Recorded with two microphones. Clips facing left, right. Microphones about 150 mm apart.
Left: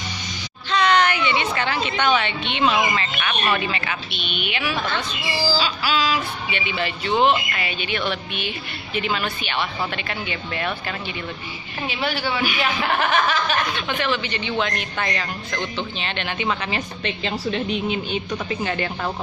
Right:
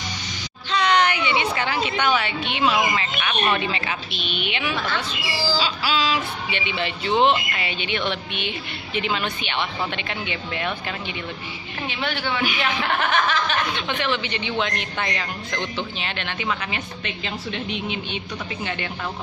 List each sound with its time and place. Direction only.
0.7 s a woman's voice: 15° right (ahead or behind)
3.4 s a woman's voice: 25° right (ahead or behind)
4.8 s speech: 20° left (ahead or behind)
5.6 s a woman's voice: 25° right (ahead or behind)
11.9 s speech: 5° left (ahead or behind)
14.0 s a woman's voice: 20° right (ahead or behind)
16.3 s a woman's voice: 35° left (ahead or behind)